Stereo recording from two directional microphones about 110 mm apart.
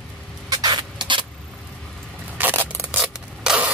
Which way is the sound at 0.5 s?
40° right (ahead or behind).